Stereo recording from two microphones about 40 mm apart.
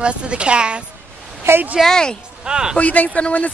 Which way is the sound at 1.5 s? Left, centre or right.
Right.